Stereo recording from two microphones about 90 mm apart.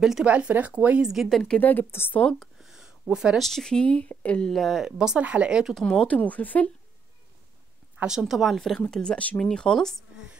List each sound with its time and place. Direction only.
0.0 s speech: 10° right (ahead or behind)
1.0 s speech: 5° right (ahead or behind)
1.6 s a woman's voice: 20° left (ahead or behind)
2.1 s speech: 5° left (ahead or behind)
2.7 s a sound: 5° right (ahead or behind)
3.3 s speech: 5° left (ahead or behind)
4.5 s speech: centre (ahead or behind)
5.9 s speech: 10° left (ahead or behind)
8.0 s speech: 5° right (ahead or behind)